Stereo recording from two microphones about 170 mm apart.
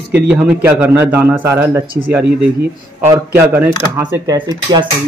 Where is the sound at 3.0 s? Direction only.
15° right (ahead or behind).